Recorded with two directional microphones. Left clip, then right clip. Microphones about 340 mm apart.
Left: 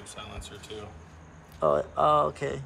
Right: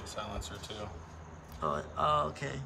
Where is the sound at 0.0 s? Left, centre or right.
Centre.